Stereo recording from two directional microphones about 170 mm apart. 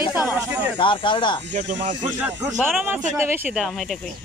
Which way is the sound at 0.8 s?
30° left (ahead or behind).